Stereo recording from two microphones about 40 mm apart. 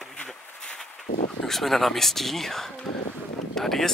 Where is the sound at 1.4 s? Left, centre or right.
Centre.